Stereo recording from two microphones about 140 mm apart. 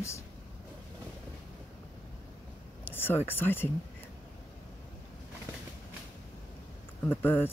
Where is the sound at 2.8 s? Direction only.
15° left (ahead or behind).